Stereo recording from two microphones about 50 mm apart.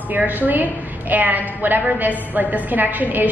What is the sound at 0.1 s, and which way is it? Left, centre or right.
A woman's voice, right.